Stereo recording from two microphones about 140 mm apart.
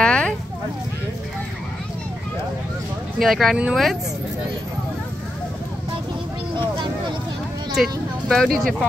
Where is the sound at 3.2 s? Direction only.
Centre (ahead or behind).